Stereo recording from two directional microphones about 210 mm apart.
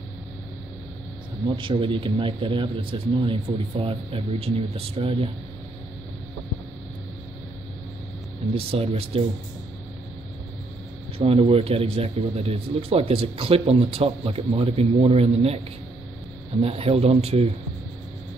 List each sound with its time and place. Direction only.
1.6 s a man's voice: 25° right (ahead or behind)
8.7 s a man's voice: 30° right (ahead or behind)
11.1 s a man's voice: 30° right (ahead or behind)
16.6 s a man's voice: 30° right (ahead or behind)